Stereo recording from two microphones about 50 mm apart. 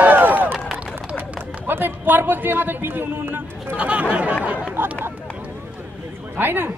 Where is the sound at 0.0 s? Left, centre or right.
Right.